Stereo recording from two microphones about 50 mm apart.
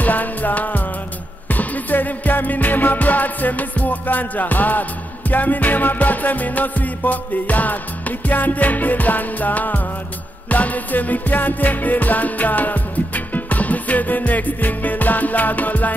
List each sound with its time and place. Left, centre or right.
0.0 s music: left